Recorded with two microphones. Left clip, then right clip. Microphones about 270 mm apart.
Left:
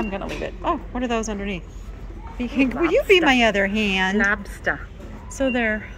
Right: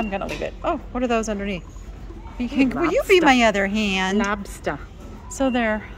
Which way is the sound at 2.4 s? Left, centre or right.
Right.